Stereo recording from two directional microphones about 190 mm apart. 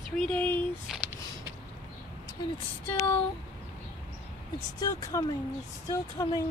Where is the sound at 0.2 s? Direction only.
10° left (ahead or behind).